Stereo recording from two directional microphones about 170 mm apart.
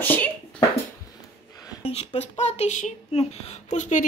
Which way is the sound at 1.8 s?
35° left (ahead or behind).